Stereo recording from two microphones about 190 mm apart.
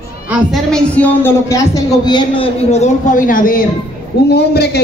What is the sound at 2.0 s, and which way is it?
A man's voice, 25° left (ahead or behind).